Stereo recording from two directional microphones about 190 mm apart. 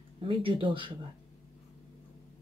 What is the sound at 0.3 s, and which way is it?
Speech, 25° right (ahead or behind).